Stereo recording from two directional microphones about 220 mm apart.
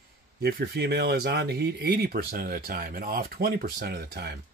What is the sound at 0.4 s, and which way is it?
Speech, 45° right (ahead or behind).